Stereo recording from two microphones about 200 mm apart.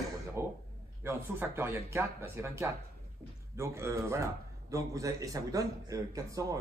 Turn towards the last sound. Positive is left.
turn(degrees=-15)  # may be behind; listen again after turning